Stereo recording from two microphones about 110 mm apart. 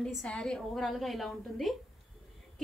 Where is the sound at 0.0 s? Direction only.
10° left (ahead or behind).